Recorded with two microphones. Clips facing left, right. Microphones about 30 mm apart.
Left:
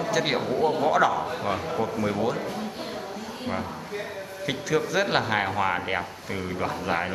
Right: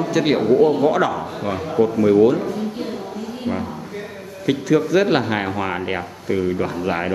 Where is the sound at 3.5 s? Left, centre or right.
Left.